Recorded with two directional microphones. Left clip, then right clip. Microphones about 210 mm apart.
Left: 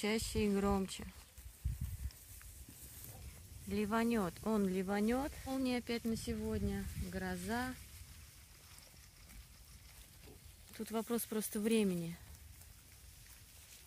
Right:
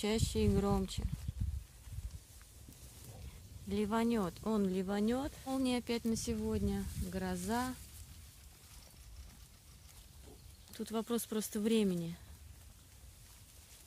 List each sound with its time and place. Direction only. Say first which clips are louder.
0.0 s speech: right 2 dB; 5° right (ahead or behind)
3.6 s speech: right 1 dB; 5° right (ahead or behind)
5.5 s speech: right 4 dB; 10° right (ahead or behind)
10.7 s speech: right 1 dB; centre (ahead or behind)